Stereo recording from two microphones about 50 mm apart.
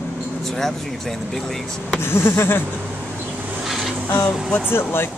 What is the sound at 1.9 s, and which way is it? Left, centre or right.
Speech, left.